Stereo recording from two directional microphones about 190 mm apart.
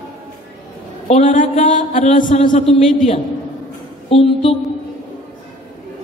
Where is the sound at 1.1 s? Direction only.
40° left (ahead or behind).